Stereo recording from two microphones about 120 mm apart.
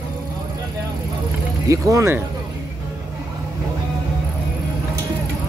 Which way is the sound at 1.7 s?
25° right (ahead or behind).